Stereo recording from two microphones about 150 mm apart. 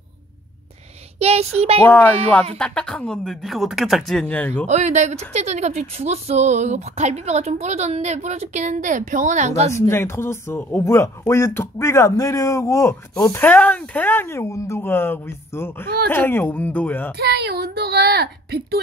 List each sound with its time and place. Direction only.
1.2 s speech: 45° right (ahead or behind)
1.9 s speech: 10° left (ahead or behind)
4.6 s speech: 50° right (ahead or behind)
9.8 s speech: 15° left (ahead or behind)
17.2 s speech: 90° right